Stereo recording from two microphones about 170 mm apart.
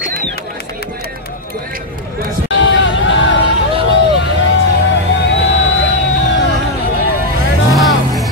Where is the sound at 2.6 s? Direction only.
90° left.